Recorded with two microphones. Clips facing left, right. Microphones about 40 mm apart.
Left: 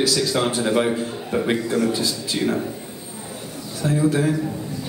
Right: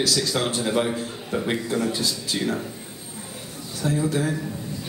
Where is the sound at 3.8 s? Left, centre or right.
Centre.